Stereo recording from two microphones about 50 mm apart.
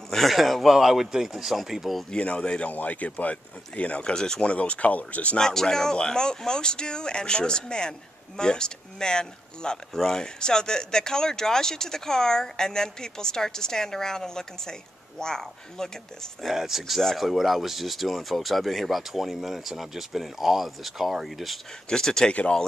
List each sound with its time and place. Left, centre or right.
0.1 s speech: centre
2.0 s speech: centre
2.7 s speech: left; by 4.5 s centre
4.5 s speech: left
5.4 s speech: centre
16.4 s speech: centre
17.0 s speech: centre
21.8 s speech: centre